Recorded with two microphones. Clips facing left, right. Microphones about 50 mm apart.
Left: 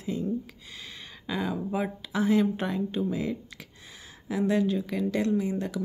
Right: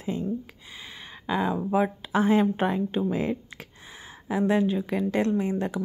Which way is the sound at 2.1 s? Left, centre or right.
Right.